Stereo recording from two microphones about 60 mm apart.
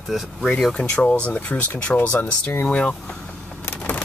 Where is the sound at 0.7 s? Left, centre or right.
Centre.